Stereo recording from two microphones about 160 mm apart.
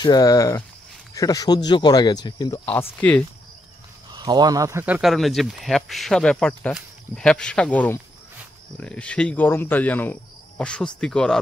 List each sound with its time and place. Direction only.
0.0 s speech: 25° left (ahead or behind)
2.6 s speech: 10° left (ahead or behind)
4.1 s speech: 25° right (ahead or behind); by 11.3 s 5° left (ahead or behind)